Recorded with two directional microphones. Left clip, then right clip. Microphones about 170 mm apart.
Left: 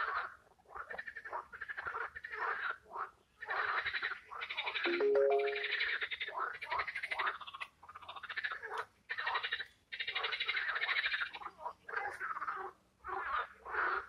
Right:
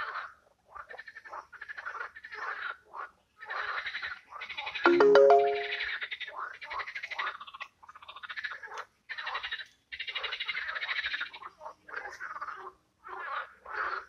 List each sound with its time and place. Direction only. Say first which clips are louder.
1.8 s a sound: right 2 dB; 25° right (ahead or behind)
4.8 s music: right 12 dB; 55° right (ahead or behind)
5.4 s music: right 6 dB; 20° right (ahead or behind)
11.9 s frog: even; 20° right (ahead or behind)